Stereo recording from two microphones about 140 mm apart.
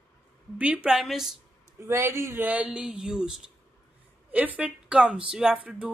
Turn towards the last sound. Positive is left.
turn(degrees=-10)  # may be behind; listen again after turning